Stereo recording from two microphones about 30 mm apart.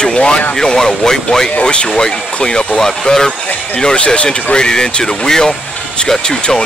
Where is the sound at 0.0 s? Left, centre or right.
Left.